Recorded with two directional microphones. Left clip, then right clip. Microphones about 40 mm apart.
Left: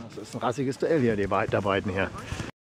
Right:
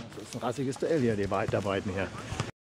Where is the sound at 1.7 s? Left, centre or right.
Left.